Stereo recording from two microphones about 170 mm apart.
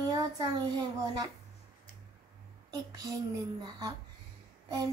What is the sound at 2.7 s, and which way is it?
Speech, 20° right (ahead or behind).